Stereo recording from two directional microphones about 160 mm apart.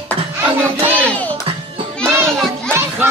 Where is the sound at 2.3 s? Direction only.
5° left (ahead or behind).